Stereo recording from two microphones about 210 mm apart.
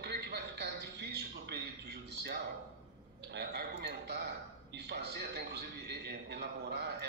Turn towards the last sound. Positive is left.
turn(degrees=-55)  # may be behind; listen again after turning